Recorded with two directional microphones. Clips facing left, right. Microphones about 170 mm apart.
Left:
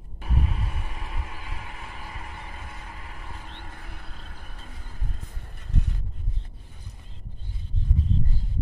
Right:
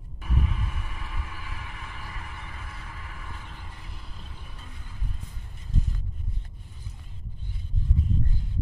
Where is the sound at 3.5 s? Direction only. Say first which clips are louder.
Left 3 dB; 55° left (ahead or behind).